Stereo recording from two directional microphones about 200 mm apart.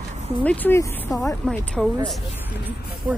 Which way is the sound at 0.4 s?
10° left (ahead or behind).